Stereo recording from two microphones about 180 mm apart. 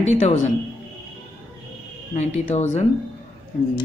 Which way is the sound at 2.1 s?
40° left (ahead or behind).